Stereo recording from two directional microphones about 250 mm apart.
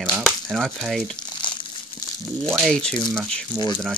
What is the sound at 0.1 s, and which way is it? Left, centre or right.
Speech, centre.